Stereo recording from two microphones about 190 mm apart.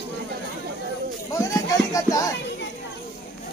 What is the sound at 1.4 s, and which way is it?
Music, 15° left (ahead or behind).